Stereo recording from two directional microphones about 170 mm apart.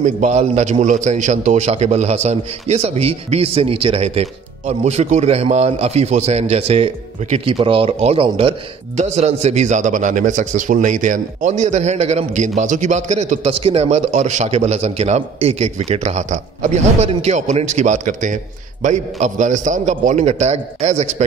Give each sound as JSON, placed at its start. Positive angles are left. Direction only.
{"t": 0.0, "sound": "a man's voice", "side_deg": -45}